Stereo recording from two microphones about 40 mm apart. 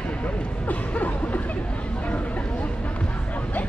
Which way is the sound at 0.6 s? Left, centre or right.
Left.